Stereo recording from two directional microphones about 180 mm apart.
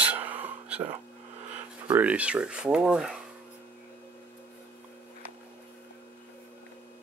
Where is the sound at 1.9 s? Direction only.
10° right (ahead or behind).